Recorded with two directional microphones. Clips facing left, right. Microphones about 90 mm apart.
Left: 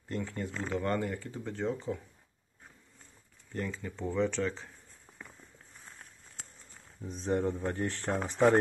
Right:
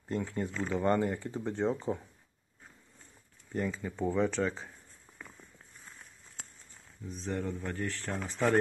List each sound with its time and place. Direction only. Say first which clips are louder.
0.1 s speech: right 2 dB; 20° right (ahead or behind)
3.5 s speech: right 3 dB; 10° right (ahead or behind)
7.2 s speech: left 5 dB; 25° left (ahead or behind)